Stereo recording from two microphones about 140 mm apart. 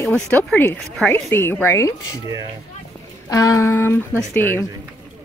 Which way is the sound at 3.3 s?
25° left (ahead or behind).